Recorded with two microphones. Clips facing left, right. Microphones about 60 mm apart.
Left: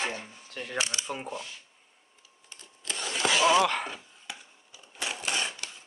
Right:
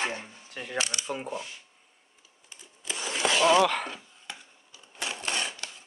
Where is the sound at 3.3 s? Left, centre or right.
Centre.